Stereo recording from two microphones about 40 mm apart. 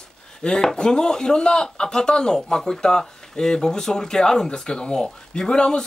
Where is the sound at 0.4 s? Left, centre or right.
Centre.